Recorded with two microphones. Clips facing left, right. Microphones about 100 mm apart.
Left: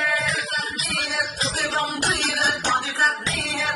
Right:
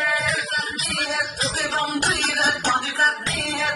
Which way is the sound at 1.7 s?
45° right (ahead or behind).